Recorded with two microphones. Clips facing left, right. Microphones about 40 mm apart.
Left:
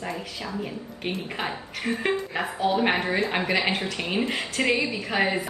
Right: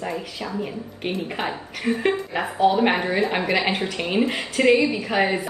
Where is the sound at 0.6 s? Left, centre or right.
Centre.